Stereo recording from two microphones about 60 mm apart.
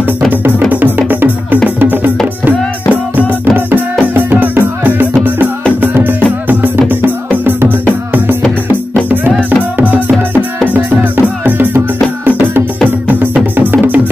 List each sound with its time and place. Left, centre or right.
0.7 s music: right
8.9 s music: right